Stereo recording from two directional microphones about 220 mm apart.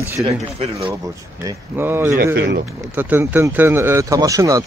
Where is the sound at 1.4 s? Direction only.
10° right (ahead or behind).